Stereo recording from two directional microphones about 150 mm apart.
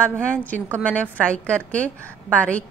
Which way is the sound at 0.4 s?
10° left (ahead or behind).